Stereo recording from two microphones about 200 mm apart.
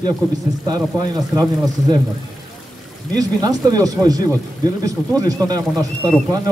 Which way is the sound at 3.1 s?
20° right (ahead or behind).